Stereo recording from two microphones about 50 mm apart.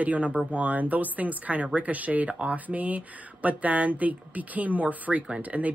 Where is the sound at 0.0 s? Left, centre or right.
Right.